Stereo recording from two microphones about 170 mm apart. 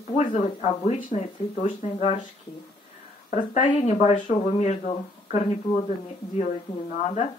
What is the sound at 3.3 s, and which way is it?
Speech, 40° left (ahead or behind).